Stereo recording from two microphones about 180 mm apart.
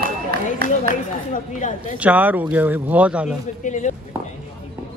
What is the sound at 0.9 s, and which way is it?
Speech, 45° left (ahead or behind).